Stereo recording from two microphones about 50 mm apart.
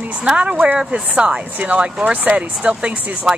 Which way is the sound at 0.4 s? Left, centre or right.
Right.